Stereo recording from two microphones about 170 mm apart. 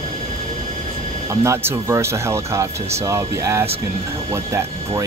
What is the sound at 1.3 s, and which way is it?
Speech, 15° right (ahead or behind).